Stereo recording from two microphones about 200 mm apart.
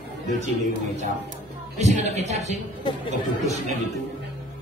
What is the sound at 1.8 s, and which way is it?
Music, 35° right (ahead or behind).